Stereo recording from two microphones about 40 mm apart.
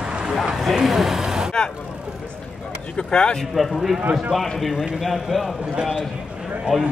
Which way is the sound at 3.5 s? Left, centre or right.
Centre.